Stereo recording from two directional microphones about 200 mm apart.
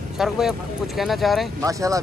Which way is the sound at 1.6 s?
15° right (ahead or behind).